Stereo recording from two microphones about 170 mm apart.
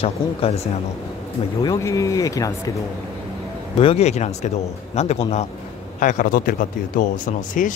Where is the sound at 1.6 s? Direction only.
20° left (ahead or behind).